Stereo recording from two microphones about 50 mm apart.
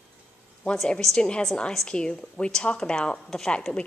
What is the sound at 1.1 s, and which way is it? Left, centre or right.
A woman's voice, centre.